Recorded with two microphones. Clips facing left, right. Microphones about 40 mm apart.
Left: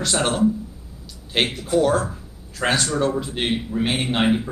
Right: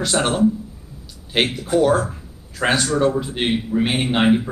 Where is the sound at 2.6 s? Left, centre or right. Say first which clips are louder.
Right 3 dB; centre.